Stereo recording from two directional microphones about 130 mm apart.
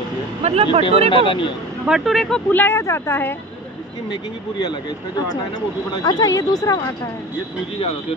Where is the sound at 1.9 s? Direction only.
Centre (ahead or behind); by 3.3 s 15° left (ahead or behind).